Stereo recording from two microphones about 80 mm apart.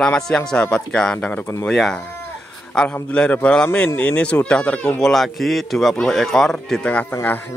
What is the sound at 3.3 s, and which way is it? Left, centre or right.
Speech, centre.